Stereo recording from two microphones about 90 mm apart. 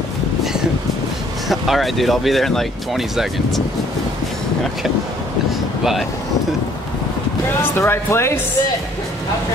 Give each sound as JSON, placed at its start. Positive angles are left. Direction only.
{"t": 1.5, "sound": "speech", "side_deg": 0}
{"t": 7.7, "sound": "speech", "side_deg": 25}